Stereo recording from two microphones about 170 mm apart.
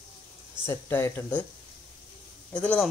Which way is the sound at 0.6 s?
15° left (ahead or behind).